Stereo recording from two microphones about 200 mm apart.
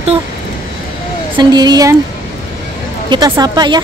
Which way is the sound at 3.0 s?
20° right (ahead or behind).